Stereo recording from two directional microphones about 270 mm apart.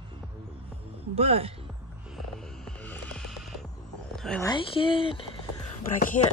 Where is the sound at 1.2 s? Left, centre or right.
Right.